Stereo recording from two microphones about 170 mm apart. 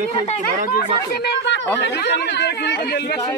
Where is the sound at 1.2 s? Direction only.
85° left.